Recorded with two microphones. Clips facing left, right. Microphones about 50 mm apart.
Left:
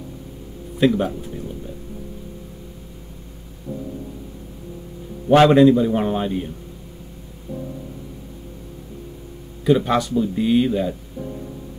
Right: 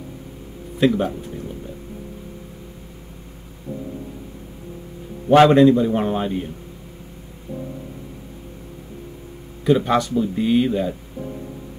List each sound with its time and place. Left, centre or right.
0.7 s speech: centre
5.5 s speech: centre
7.5 s music: right
9.7 s speech: centre